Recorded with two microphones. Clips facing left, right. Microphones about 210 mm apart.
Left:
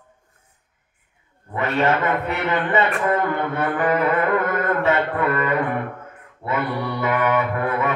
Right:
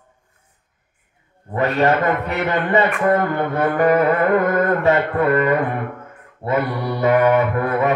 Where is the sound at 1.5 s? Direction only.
35° right (ahead or behind).